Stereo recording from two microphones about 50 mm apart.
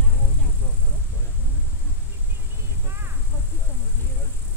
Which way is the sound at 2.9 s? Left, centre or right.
Right.